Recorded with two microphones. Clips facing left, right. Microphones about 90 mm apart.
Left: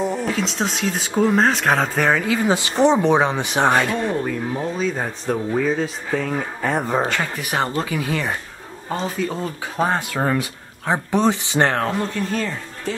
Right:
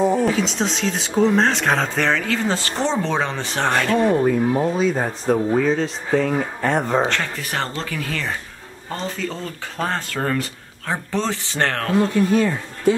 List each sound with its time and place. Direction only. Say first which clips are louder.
0.2 s speech: right 3 dB; centre (ahead or behind)
4.1 s speech: right 6 dB; 15° right (ahead or behind)
4.6 s speech: right 3 dB; 5° right (ahead or behind); by 11.9 s 15° left (ahead or behind)
12.0 s speech: right 6 dB; 5° right (ahead or behind)